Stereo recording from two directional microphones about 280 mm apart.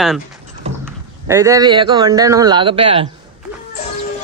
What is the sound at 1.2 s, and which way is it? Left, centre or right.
A man's voice, centre.